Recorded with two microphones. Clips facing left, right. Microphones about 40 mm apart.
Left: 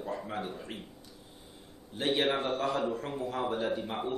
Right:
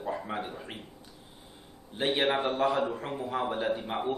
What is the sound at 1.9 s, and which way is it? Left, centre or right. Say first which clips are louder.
A man's voice: right 2 dB; centre.